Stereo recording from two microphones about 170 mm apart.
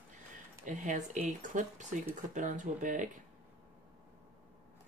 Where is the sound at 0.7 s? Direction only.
50° right (ahead or behind).